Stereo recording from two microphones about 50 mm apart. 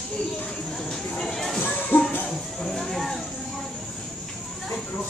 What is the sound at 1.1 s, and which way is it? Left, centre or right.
Music, centre.